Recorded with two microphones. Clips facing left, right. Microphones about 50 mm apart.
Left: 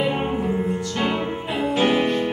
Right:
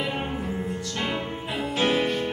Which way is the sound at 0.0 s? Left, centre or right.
Centre.